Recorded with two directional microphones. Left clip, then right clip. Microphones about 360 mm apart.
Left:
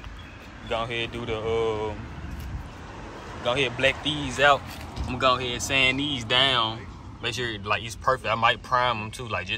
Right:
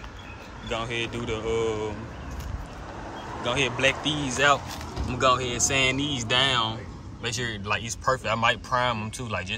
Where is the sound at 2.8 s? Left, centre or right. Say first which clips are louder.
Right 4 dB; right.